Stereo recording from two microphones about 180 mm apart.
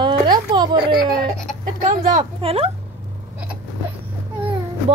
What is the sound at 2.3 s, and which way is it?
Speech, 30° right (ahead or behind).